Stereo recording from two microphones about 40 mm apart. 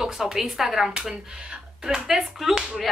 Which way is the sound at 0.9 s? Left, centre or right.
Right.